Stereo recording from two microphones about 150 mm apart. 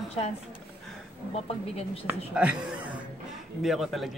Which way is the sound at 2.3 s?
5° right (ahead or behind).